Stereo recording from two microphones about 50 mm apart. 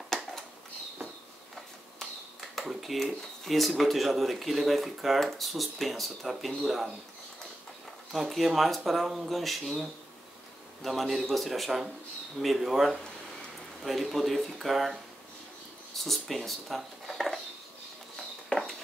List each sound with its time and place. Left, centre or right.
2.7 s speech: centre
8.1 s speech: centre
18.5 s a sound: centre